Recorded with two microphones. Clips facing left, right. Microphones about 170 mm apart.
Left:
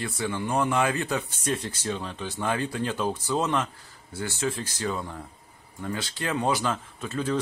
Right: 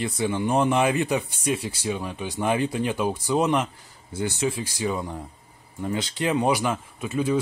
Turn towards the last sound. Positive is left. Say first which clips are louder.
# right 4 dB
turn(degrees=-10)  # may be behind; listen again after turning